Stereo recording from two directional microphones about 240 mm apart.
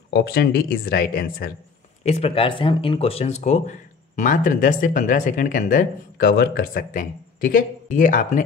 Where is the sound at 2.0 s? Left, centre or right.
Left.